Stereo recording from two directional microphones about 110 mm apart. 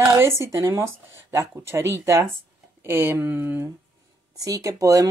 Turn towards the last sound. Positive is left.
turn(degrees=-30)  # may be behind; listen again after turning